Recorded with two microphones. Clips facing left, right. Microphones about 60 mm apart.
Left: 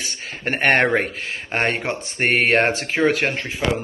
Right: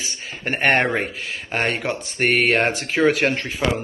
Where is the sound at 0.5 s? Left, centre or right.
Left.